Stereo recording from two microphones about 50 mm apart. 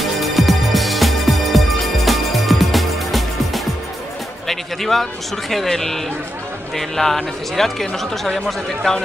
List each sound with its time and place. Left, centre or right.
0.0 s music: centre
5.5 s speech: centre